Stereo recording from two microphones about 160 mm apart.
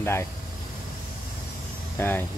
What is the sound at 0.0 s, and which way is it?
Speech, 15° left (ahead or behind).